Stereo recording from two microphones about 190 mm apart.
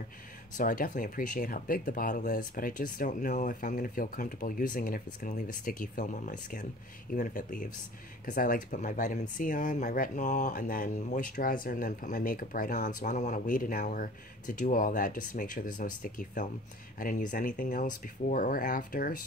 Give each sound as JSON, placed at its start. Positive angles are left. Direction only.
{"t": 0.6, "sound": "speech", "side_deg": 45}